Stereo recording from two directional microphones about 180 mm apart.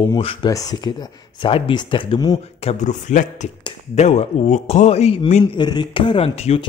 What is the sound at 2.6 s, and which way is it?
A man's voice, 40° left (ahead or behind).